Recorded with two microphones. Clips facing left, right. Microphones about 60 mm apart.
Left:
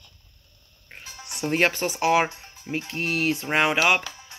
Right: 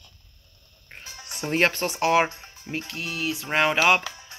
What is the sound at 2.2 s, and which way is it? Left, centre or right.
Speech, centre.